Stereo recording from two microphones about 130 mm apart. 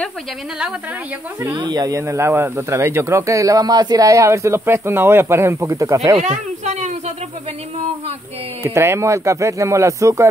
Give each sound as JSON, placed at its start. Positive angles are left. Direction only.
{"t": 1.6, "sound": "speech", "side_deg": -30}
{"t": 6.1, "sound": "a sound", "side_deg": -65}
{"t": 8.6, "sound": "speech", "side_deg": -20}